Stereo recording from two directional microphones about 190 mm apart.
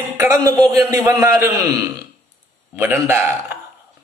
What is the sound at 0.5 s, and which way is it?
A man's voice, 15° right (ahead or behind).